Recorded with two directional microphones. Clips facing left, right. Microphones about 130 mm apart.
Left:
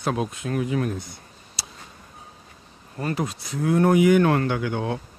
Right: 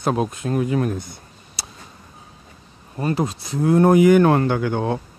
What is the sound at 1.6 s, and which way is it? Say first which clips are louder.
Tick: right 3 dB; 55° right (ahead or behind).